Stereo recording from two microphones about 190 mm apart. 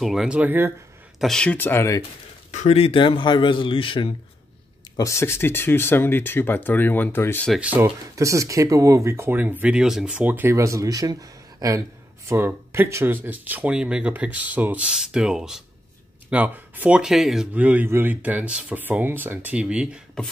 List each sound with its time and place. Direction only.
0.0 s speech: centre (ahead or behind)
1.2 s speech: 5° left (ahead or behind)
2.5 s speech: 35° left (ahead or behind)
4.9 s speech: 15° left (ahead or behind)
7.6 s speech: 10° right (ahead or behind)